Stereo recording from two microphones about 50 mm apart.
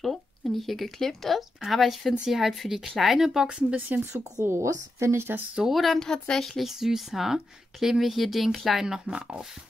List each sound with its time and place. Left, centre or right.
0.0 s speech: centre
4.4 s speech: right
5.6 s speech: centre
5.9 s a woman's voice: centre
6.6 s speech: centre